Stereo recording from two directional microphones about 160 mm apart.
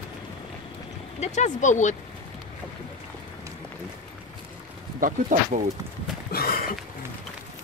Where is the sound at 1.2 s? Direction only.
45° left (ahead or behind).